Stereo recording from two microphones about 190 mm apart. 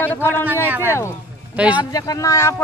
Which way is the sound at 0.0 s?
10° left (ahead or behind).